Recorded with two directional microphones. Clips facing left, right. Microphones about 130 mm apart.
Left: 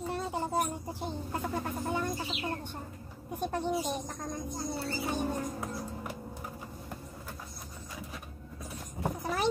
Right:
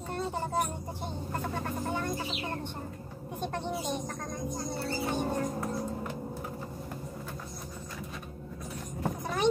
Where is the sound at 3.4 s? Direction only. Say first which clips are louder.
Left 2 dB; 10° left (ahead or behind).